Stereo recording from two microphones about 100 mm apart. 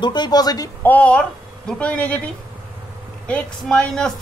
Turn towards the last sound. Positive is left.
turn(degrees=5)  # may be behind; listen again after turning